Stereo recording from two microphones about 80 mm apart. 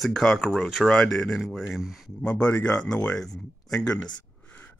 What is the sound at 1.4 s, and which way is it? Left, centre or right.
Speech, centre.